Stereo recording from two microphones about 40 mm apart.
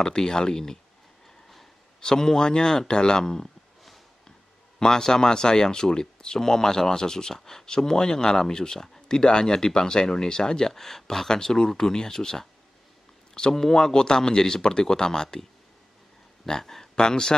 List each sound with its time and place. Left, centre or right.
0.0 s speech: centre
2.0 s speech: centre
4.7 s speech: centre
16.4 s speech: centre